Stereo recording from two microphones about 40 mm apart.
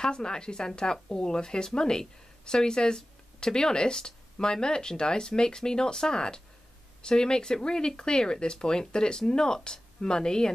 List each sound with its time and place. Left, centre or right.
0.0 s speech: centre